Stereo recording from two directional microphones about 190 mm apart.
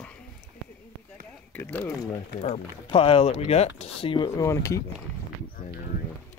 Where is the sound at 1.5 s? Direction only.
10° left (ahead or behind).